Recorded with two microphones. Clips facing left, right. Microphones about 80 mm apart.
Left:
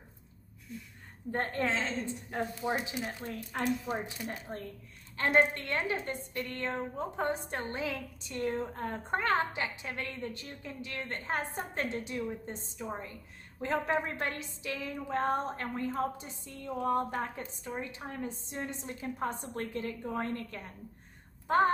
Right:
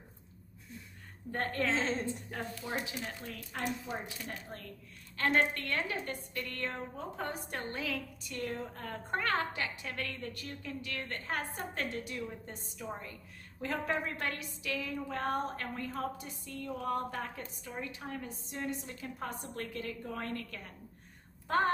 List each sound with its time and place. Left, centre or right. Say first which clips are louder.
1.3 s a woman's voice: left 1 dB; left